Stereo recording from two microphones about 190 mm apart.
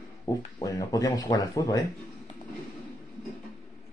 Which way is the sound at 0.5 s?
20° left (ahead or behind).